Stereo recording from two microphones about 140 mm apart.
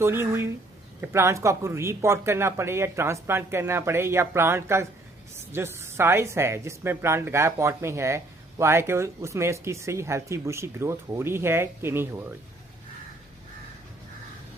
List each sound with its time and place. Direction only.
0.0 s a woman's voice: 15° right (ahead or behind)